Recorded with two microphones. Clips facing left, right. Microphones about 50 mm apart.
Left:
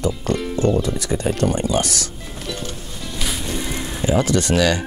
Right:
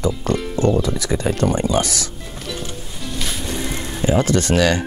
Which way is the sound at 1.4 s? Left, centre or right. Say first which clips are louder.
Right 2 dB; centre.